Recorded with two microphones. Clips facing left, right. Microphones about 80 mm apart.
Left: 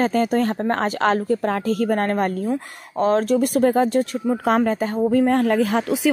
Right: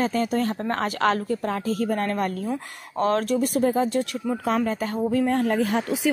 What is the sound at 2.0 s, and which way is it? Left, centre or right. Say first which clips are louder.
Speech: left 4 dB; left.